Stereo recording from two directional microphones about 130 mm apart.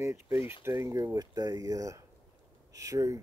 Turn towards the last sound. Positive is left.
turn(degrees=-25)  # may be behind; listen again after turning